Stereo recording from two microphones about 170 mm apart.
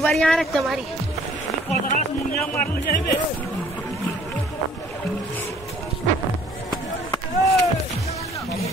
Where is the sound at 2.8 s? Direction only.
55° left (ahead or behind).